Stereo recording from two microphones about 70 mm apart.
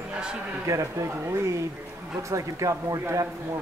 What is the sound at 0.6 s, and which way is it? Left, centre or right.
Speech, right.